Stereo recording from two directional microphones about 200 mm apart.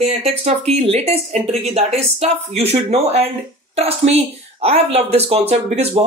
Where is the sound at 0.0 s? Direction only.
30° right (ahead or behind).